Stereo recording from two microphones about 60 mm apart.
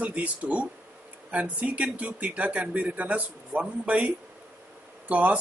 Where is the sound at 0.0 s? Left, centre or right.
Right.